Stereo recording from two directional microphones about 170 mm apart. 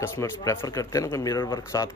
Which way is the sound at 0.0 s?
20° left (ahead or behind).